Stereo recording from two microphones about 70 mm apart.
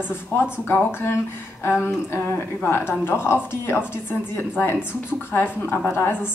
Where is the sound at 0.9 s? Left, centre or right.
Left.